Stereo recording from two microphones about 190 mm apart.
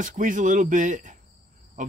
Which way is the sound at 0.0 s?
45° right (ahead or behind).